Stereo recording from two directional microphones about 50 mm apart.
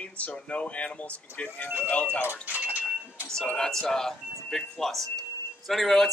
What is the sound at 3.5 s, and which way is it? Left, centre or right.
A man's voice, centre.